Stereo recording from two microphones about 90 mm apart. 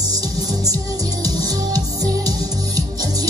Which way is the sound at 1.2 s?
45° right (ahead or behind).